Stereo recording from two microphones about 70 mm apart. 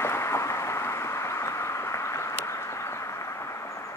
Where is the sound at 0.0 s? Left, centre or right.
Left.